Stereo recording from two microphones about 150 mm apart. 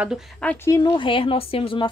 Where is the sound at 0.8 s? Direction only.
35° left (ahead or behind).